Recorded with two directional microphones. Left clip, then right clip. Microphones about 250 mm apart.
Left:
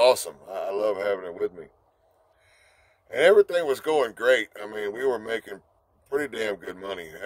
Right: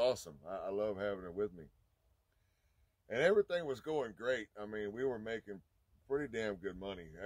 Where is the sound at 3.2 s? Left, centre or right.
Centre.